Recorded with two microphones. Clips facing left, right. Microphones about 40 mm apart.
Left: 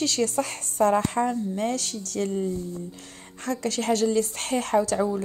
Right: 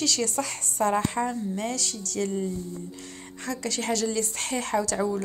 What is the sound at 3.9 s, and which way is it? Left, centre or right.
Speech, left.